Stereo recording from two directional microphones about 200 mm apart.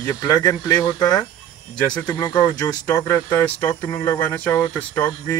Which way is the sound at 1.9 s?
5° left (ahead or behind).